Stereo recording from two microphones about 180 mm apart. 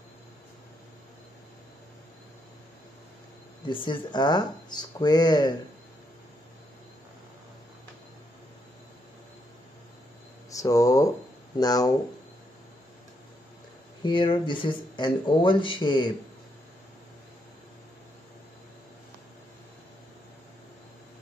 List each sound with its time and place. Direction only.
3.6 s speech: 25° left (ahead or behind)
10.5 s speech: 20° left (ahead or behind)
14.0 s speech: 25° left (ahead or behind)